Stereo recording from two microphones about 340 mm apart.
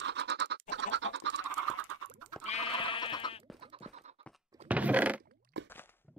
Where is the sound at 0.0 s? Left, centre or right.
Right.